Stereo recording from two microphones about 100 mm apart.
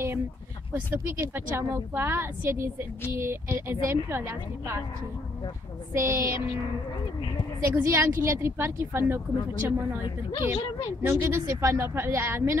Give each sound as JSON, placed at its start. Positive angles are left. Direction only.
{"t": 0.7, "sound": "speech", "side_deg": -20}
{"t": 5.9, "sound": "speech", "side_deg": -30}
{"t": 7.6, "sound": "speech", "side_deg": -25}
{"t": 11.2, "sound": "speech", "side_deg": -25}